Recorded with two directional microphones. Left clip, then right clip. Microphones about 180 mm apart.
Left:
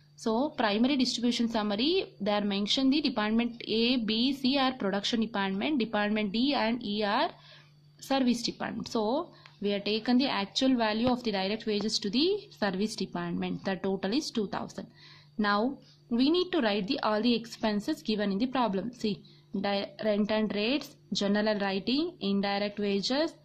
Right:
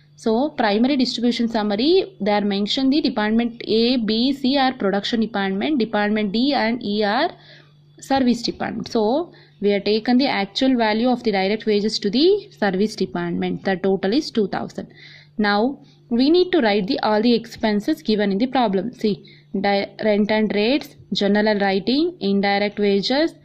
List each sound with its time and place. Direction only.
0.2 s a woman's voice: 10° right (ahead or behind)